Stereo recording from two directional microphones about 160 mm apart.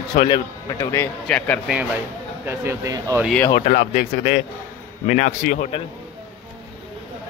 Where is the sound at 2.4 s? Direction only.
15° right (ahead or behind).